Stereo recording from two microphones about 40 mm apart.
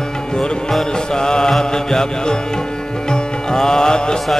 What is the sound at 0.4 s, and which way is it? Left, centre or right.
Music, centre.